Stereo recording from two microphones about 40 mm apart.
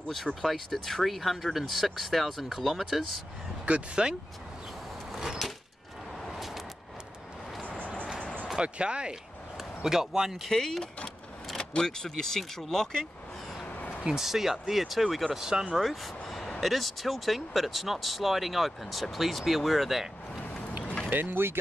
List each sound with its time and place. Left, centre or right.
0.1 s speech: centre
3.7 s speech: right
6.2 s vehicle: centre
8.5 s speech: right
9.8 s speech: centre
10.5 s speech: centre
13.7 s a sound: left
14.1 s speech: centre
15.2 s speech: centre
15.7 s vehicle: centre
16.6 s speech: centre
21.1 s speech: right